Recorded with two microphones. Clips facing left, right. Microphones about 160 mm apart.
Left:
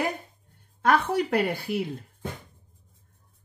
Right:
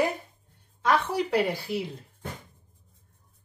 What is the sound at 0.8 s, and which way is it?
Speech, 55° left (ahead or behind).